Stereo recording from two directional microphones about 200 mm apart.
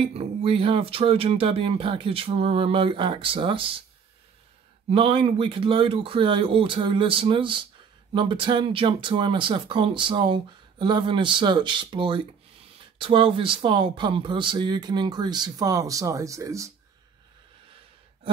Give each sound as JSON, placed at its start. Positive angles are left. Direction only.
{"t": 0.1, "sound": "speech", "side_deg": -30}
{"t": 4.8, "sound": "speech", "side_deg": -30}